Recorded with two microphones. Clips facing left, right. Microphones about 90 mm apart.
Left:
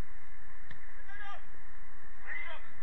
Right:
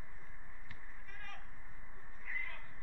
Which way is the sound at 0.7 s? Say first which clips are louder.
Left 4 dB; 50° left (ahead or behind).